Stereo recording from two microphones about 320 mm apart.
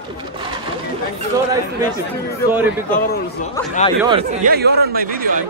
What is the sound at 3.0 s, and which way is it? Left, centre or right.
Speech, left.